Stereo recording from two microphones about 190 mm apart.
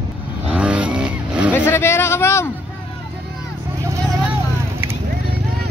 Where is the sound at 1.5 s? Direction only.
10° left (ahead or behind).